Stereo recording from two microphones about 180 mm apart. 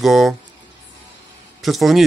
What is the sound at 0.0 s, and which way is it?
Speech, centre (ahead or behind).